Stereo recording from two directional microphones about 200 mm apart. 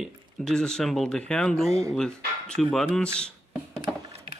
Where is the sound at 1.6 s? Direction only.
15° right (ahead or behind).